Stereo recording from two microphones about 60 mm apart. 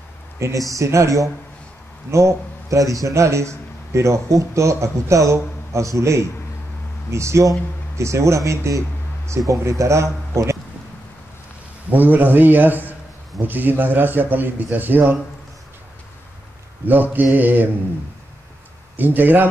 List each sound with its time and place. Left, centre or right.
0.6 s a man's voice: right
11.9 s a man's voice: right
16.8 s a man's voice: right
18.9 s a man's voice: right